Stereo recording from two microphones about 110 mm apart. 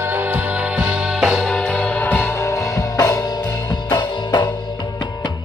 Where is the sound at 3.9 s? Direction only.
45° left (ahead or behind).